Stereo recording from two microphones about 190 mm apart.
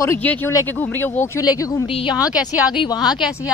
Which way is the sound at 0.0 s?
10° left (ahead or behind).